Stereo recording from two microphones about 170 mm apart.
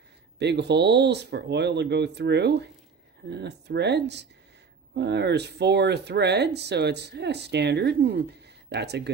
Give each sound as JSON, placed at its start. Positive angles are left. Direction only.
{"t": 0.4, "sound": "speech", "side_deg": -85}